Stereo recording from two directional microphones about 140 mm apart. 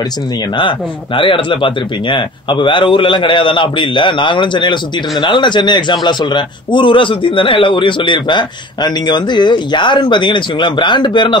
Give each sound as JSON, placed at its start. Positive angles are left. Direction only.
{"t": 0.6, "sound": "a man's voice", "side_deg": 35}